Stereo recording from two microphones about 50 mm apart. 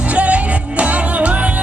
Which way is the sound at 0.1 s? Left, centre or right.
Right.